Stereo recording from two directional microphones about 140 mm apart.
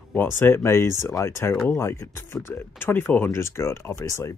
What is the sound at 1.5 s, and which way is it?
Speech, 5° left (ahead or behind).